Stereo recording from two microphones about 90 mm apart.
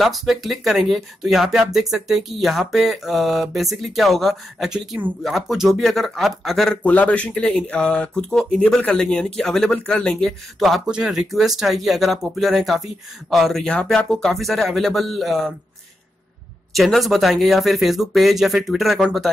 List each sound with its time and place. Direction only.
0.0 s speech: centre (ahead or behind)
6.8 s speech: 15° left (ahead or behind)
10.9 s speech: 5° right (ahead or behind)
16.7 s speech: centre (ahead or behind)